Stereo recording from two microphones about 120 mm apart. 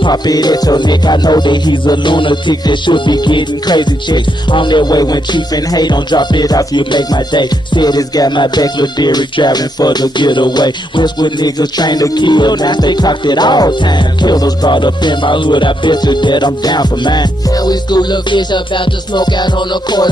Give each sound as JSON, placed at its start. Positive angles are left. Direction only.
{"t": 0.0, "sound": "music", "side_deg": 35}